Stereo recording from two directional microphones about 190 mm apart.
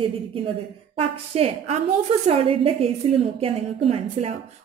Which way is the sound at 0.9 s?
30° right (ahead or behind).